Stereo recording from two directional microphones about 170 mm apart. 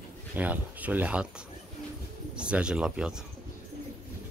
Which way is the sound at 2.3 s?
5° right (ahead or behind).